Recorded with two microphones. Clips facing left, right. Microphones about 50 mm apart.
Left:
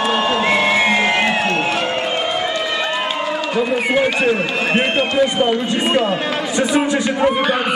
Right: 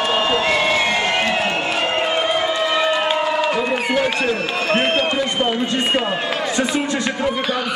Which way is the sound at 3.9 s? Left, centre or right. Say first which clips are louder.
Left 4 dB; centre.